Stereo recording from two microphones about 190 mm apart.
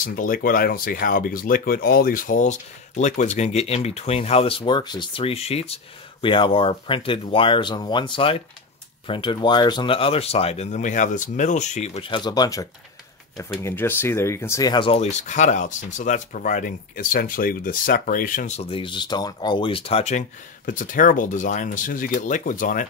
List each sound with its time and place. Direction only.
0.0 s speech: 45° left (ahead or behind)